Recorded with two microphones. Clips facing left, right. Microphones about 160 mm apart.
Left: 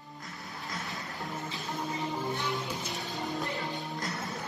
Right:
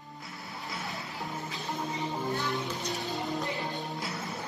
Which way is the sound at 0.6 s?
Centre (ahead or behind).